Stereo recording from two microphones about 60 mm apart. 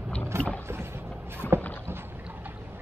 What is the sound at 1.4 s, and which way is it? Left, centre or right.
Vehicle, left.